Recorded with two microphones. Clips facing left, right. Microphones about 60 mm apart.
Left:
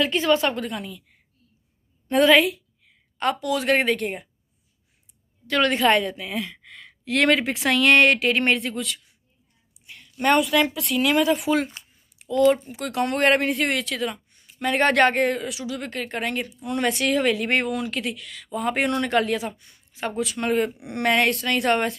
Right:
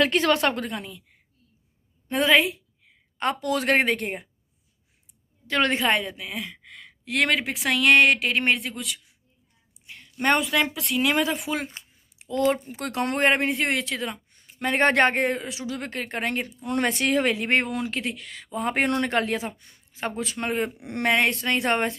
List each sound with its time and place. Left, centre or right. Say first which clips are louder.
0.0 s a woman's voice: even; right
0.5 s speech: even; right
2.0 s a woman's voice: left 4 dB; centre
2.5 s speech: left 2 dB; right
5.5 s a woman's voice: left 2 dB; right
5.8 s speech: left 4 dB; centre
9.8 s a woman's voice: left 2 dB; right
11.3 s a woman's voice: left 7 dB; centre
11.7 s a sound: even; right
12.9 s a woman's voice: left 2 dB; right
13.3 s speech: left 2 dB; centre
21.1 s a woman's voice: left 1 dB; right